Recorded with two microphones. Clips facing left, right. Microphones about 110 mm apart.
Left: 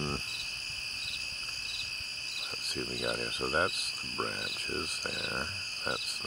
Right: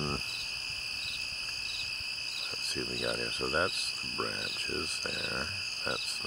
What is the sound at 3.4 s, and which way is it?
Cricket, 15° left (ahead or behind).